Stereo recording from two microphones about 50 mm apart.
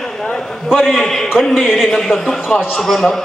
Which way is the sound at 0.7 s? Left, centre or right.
Centre.